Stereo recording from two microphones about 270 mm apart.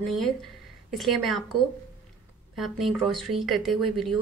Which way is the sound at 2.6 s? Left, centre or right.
Centre.